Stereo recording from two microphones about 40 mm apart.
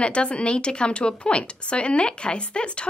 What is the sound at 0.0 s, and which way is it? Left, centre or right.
Speech, left.